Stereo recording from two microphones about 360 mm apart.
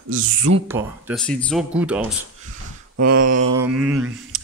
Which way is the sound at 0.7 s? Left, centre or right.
Centre.